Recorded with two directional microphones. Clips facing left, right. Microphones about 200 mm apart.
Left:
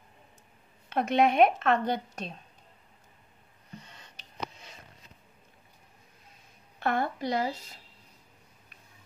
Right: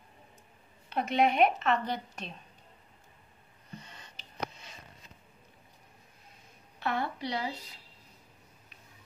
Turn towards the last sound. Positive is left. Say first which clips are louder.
# left 5 dB
turn(degrees=45)  # may be behind; listen again after turning